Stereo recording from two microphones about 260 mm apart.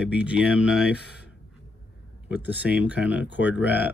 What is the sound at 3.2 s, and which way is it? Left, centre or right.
Speech, left.